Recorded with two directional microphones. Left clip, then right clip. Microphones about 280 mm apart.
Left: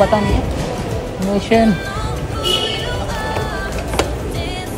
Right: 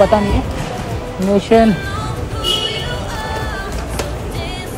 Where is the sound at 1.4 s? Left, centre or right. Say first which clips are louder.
Right 3 dB; centre.